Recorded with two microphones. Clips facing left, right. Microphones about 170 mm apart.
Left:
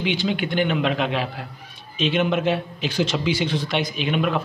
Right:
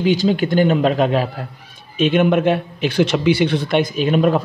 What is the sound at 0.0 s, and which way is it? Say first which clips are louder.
A man's voice: right 7 dB; 40° right (ahead or behind).